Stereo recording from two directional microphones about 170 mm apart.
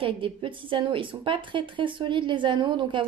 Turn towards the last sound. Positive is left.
turn(degrees=-30)  # may be behind; listen again after turning